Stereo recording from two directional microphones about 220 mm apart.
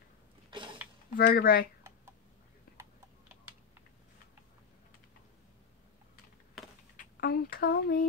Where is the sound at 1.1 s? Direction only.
45° left (ahead or behind).